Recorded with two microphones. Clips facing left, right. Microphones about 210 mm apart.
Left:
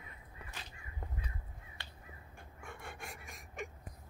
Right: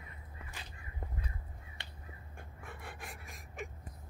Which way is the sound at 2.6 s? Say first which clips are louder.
Left 1 dB; centre (ahead or behind).